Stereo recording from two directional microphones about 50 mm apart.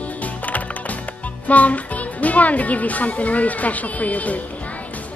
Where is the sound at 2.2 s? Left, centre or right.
Left.